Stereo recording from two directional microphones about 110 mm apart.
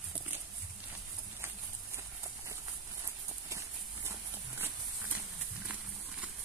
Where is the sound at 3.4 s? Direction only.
25° right (ahead or behind).